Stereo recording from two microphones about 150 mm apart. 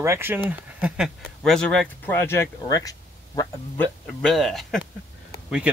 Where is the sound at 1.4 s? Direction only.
5° left (ahead or behind); by 3.5 s 25° left (ahead or behind).